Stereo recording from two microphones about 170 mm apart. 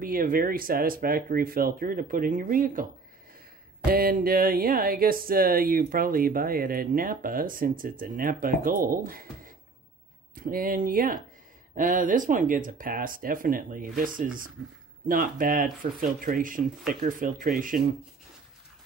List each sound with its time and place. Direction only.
0.0 s speech: 55° right (ahead or behind)